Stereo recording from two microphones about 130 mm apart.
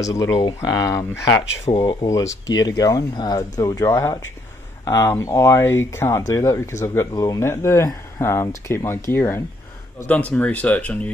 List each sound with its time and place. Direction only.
0.0 s speech: 25° left (ahead or behind)
1.7 s speech: 40° left (ahead or behind)
2.0 s speech: 25° left (ahead or behind)